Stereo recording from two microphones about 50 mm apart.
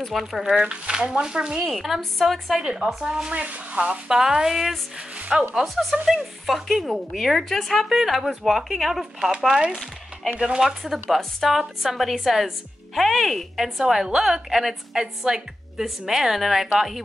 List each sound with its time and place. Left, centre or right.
0.1 s speech: centre
0.6 s a woman's voice: centre
1.7 s a woman's voice: centre; by 4.0 s right
4.1 s a woman's voice: centre
7.9 s a woman's voice: centre